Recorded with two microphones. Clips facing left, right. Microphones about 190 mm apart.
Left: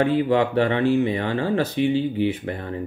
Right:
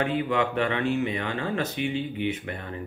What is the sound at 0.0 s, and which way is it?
Speech, 35° left (ahead or behind).